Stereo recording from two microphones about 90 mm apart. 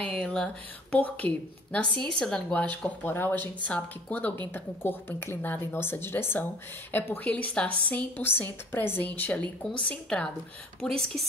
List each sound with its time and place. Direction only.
0.0 s speech: 10° left (ahead or behind)